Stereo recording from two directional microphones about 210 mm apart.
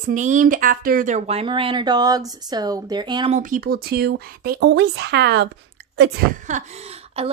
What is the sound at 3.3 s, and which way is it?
A woman's voice, 40° right (ahead or behind).